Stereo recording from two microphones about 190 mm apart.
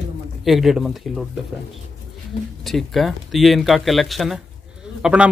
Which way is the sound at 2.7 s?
Centre (ahead or behind).